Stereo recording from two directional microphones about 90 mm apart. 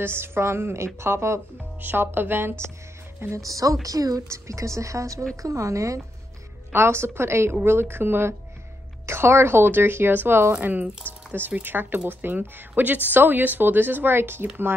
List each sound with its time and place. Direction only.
0.0 s a woman's voice: 25° right (ahead or behind)